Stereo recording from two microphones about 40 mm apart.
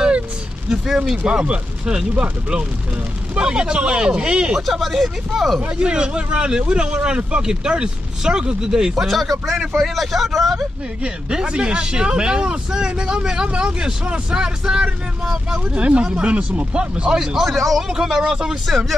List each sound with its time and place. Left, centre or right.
0.8 s speech: centre
3.3 s speech: right
4.6 s speech: centre
5.6 s speech: right
9.0 s speech: centre
11.0 s speech: right
15.7 s speech: right
17.1 s speech: centre
17.5 s speech: centre
17.8 s speech: centre
18.7 s speech: centre